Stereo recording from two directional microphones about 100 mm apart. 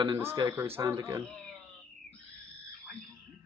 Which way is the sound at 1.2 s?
Centre (ahead or behind).